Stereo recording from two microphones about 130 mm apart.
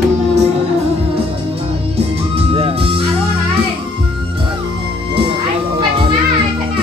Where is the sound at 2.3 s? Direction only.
45° right (ahead or behind).